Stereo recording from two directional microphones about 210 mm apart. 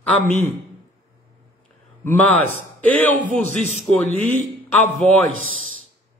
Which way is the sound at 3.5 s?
35° right (ahead or behind).